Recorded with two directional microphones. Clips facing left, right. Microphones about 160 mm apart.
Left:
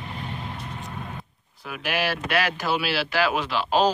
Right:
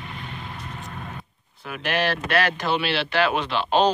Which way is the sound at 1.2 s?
Centre (ahead or behind).